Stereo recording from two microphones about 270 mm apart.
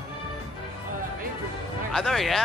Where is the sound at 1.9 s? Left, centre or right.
Centre.